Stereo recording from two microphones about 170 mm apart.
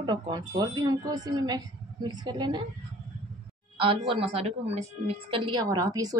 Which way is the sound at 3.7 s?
30° right (ahead or behind).